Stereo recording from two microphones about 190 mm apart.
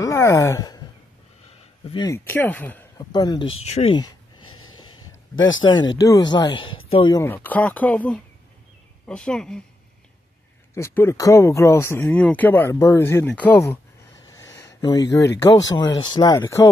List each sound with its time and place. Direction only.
0.0 s speech: 15° left (ahead or behind)
1.9 s speech: 20° left (ahead or behind)
3.0 s speech: 20° left (ahead or behind)
4.5 s a sound: 90° left
5.6 s speech: 25° left (ahead or behind)
6.6 s speech: 90° left
6.9 s speech: 25° left (ahead or behind)
7.2 s speech: 10° left (ahead or behind)
10.7 s speech: 15° left (ahead or behind)
14.2 s a sound: 15° left (ahead or behind)
14.8 s speech: 20° left (ahead or behind)